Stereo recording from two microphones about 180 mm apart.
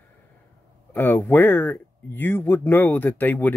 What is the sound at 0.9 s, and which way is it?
Speech, 10° left (ahead or behind).